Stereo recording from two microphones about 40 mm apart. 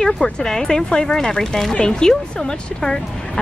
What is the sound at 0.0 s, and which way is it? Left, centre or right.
A woman's voice, centre.